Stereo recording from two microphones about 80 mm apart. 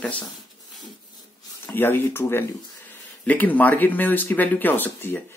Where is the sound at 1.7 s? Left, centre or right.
Left.